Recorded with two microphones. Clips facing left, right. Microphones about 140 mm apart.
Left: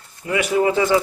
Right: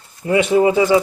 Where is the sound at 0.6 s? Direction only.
15° right (ahead or behind).